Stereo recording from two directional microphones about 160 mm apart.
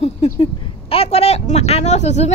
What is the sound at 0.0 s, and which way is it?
Speech, 40° left (ahead or behind).